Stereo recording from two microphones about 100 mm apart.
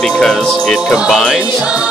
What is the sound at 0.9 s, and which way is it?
Music, centre (ahead or behind).